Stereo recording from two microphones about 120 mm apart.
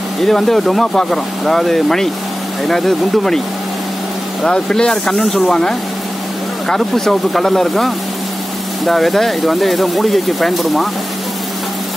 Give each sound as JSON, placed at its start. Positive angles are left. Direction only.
{"t": 0.2, "sound": "speech", "side_deg": 0}
{"t": 4.4, "sound": "speech", "side_deg": 5}